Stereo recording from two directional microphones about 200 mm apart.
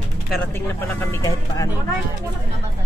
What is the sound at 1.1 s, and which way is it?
Speech, 15° left (ahead or behind).